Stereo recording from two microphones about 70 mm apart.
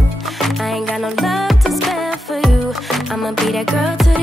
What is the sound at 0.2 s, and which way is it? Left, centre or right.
Music, centre.